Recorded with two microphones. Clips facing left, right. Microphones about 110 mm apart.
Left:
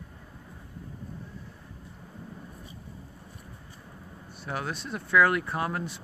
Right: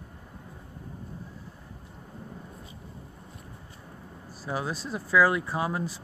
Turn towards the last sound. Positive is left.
turn(degrees=-10)  # may be behind; listen again after turning